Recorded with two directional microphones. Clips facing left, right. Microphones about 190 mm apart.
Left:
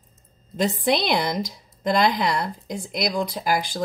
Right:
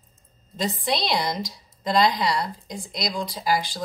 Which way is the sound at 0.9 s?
50° left (ahead or behind).